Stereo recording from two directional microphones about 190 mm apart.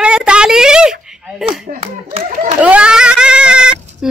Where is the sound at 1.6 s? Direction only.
35° right (ahead or behind).